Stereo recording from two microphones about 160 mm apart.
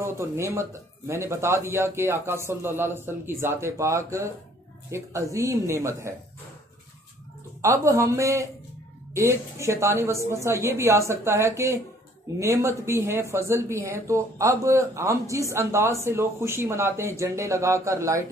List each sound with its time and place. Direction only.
0.0 s speech: 15° right (ahead or behind)
7.6 s speech: 20° right (ahead or behind)